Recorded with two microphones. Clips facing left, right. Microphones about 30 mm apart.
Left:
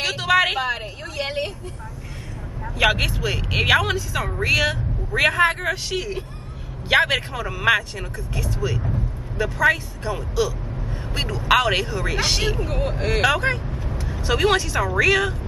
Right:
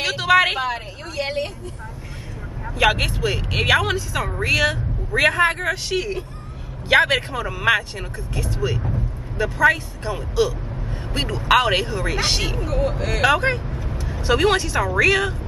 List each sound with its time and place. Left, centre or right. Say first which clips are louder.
0.0 s a sound: right 2 dB; centre
2.6 s speech: right 1 dB; centre
12.6 s speech: right 2 dB; left
13.2 s speech: right 3 dB; centre